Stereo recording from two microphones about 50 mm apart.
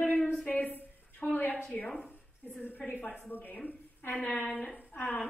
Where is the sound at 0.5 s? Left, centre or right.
Left.